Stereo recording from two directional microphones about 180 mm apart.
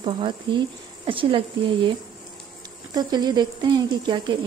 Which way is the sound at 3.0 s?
25° right (ahead or behind).